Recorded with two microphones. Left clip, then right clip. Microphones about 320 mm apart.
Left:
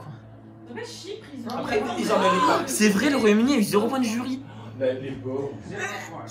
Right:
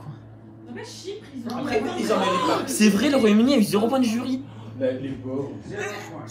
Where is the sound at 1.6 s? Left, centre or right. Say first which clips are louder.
Right 1 dB; centre.